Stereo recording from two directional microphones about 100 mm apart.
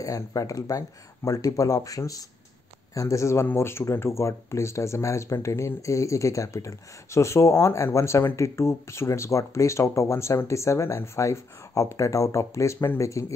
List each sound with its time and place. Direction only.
0.0 s speech: 35° left (ahead or behind)